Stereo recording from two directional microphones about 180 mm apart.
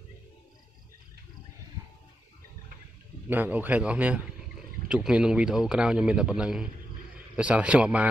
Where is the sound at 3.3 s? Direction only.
10° right (ahead or behind).